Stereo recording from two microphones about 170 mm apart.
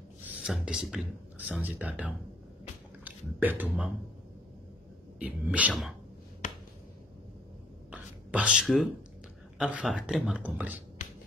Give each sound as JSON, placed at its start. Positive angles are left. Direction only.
{"t": 0.4, "sound": "speech", "side_deg": -5}
{"t": 5.2, "sound": "speech", "side_deg": -10}
{"t": 6.4, "sound": "finger snapping", "side_deg": 45}
{"t": 7.9, "sound": "a sound", "side_deg": -10}
{"t": 9.6, "sound": "speech", "side_deg": -5}
{"t": 11.0, "sound": "music", "side_deg": 50}